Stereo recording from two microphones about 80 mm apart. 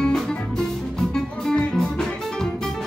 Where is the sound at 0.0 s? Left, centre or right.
Centre.